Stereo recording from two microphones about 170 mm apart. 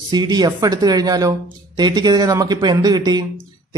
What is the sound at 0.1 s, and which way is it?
Speech, 25° right (ahead or behind).